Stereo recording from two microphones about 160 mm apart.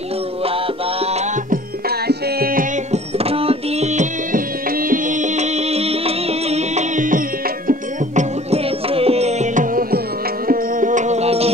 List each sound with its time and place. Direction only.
0.5 s music: 40° right (ahead or behind)
1.5 s music: 80° right
2.9 s music: 40° right (ahead or behind)